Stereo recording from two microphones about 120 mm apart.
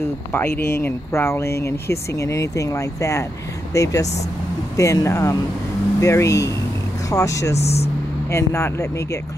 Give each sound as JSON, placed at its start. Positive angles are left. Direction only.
{"t": 0.3, "sound": "speech", "side_deg": 20}
{"t": 7.5, "sound": "speech", "side_deg": 60}
{"t": 8.3, "sound": "speech", "side_deg": 25}